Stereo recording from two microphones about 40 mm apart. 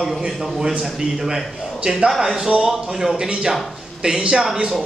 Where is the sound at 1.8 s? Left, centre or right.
Centre.